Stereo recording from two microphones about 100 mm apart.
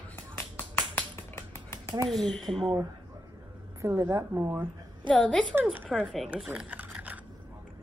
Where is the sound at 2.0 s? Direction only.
Centre (ahead or behind).